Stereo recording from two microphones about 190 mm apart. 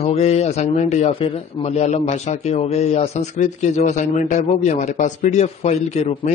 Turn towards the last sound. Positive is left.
turn(degrees=35)  # may be behind; listen again after turning